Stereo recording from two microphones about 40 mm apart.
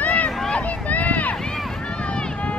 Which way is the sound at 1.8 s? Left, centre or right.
Left.